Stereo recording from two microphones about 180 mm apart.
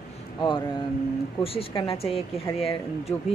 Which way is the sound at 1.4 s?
30° left (ahead or behind).